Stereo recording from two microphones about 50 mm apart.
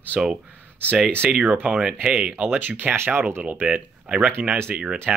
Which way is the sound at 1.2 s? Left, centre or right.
Right.